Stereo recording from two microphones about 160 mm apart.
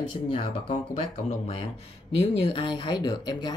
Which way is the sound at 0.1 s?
35° left (ahead or behind).